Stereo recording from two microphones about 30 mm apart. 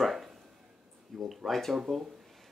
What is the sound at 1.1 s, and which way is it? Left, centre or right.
Speech, centre.